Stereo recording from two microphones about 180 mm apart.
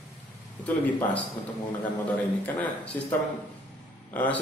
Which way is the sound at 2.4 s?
10° left (ahead or behind).